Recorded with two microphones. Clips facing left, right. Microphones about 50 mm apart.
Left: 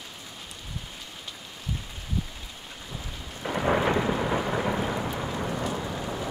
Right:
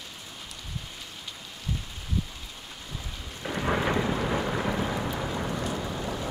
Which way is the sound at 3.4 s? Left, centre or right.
Centre.